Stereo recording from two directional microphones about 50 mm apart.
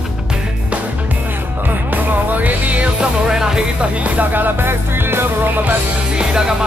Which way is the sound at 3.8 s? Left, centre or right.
Right.